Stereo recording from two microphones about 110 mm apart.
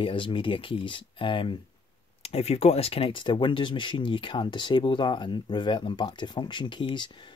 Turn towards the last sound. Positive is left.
turn(degrees=45)  # may be behind; listen again after turning